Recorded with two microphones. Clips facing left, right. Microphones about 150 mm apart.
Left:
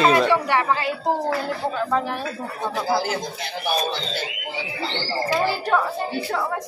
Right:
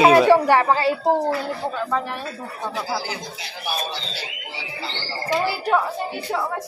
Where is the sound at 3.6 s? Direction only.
55° left (ahead or behind).